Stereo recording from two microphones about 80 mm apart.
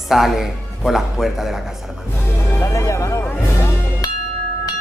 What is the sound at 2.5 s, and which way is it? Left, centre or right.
Music, left.